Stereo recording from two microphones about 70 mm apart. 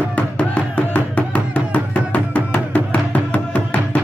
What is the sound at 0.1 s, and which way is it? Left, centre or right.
Music, centre.